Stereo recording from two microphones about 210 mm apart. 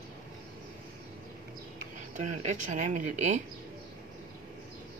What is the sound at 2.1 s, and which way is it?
Speech, 35° right (ahead or behind).